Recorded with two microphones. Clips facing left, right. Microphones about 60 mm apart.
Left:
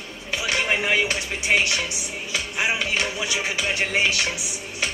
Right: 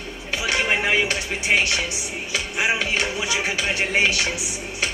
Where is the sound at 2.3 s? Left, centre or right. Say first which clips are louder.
Right 2 dB; right.